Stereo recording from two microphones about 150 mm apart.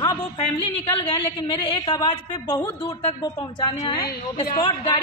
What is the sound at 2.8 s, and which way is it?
Speech, 40° left (ahead or behind).